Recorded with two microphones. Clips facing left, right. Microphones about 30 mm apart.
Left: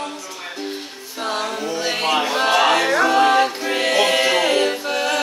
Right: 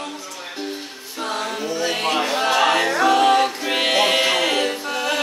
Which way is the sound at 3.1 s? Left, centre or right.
Centre.